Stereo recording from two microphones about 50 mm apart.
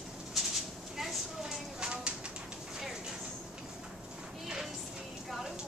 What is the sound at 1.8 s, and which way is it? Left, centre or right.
Typewriter, centre.